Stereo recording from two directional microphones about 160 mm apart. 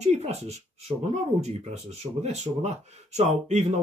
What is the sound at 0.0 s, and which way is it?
Speech, 45° right (ahead or behind).